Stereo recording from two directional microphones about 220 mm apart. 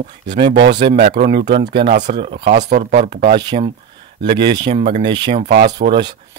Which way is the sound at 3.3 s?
20° right (ahead or behind).